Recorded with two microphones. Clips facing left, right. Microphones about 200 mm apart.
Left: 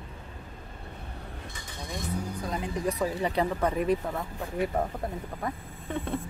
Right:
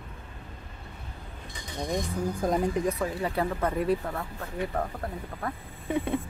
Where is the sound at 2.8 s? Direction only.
15° left (ahead or behind).